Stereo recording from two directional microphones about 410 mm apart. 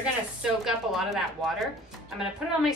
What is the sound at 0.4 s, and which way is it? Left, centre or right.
A woman's voice, centre.